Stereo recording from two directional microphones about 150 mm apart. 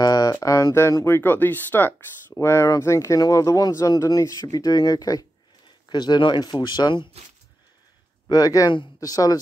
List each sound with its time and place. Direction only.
0.0 s speech: 25° left (ahead or behind)
8.3 s speech: 25° left (ahead or behind)